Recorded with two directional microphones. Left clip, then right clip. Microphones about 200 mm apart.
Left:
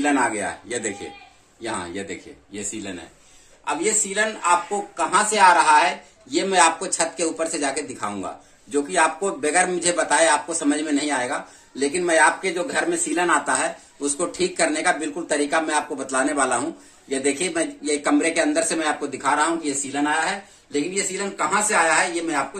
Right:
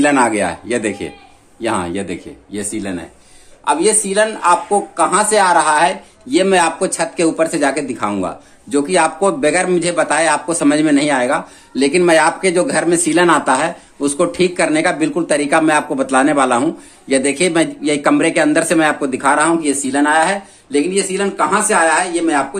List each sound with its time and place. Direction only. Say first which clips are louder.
0.0 s speech: right 8 dB; 50° right (ahead or behind); by 2.9 s 35° right (ahead or behind)
4.1 s speech: right 6 dB; 30° right (ahead or behind)